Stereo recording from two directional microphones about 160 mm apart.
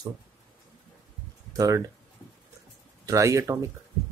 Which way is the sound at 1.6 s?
20° right (ahead or behind).